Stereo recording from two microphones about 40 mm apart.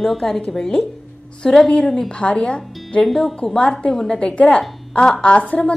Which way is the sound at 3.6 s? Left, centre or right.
Left.